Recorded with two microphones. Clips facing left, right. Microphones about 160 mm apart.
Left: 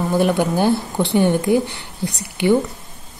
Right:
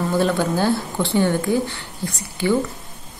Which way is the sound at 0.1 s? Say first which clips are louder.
Left 3 dB; 15° left (ahead or behind).